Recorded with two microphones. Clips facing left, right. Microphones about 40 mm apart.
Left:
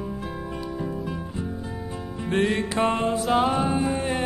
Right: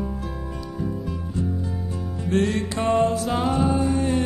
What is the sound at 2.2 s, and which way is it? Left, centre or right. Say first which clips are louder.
Music: right 1 dB; left.